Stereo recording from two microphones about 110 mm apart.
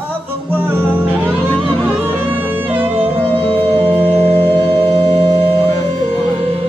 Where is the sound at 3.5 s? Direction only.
15° left (ahead or behind).